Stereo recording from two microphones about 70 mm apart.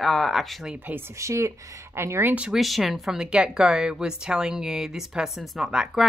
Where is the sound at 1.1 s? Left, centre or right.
Right.